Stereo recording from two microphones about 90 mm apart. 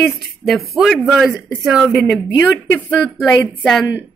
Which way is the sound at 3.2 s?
5° left (ahead or behind).